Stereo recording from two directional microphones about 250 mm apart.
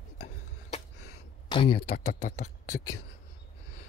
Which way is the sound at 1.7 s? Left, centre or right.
Left.